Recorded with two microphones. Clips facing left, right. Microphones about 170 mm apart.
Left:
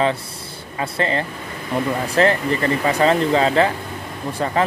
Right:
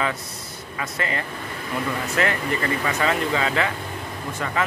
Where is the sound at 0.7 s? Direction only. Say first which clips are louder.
Left 6 dB; 30° left (ahead or behind).